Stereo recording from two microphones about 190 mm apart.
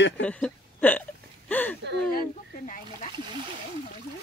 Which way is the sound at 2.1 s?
40° left (ahead or behind).